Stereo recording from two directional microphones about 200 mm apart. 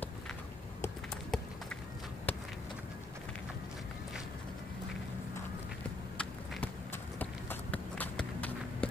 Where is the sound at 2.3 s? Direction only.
10° left (ahead or behind).